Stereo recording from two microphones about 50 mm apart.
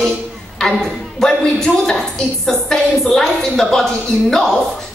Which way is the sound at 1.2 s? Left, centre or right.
Centre.